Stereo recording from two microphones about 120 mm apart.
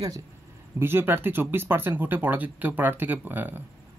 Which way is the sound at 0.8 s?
20° right (ahead or behind).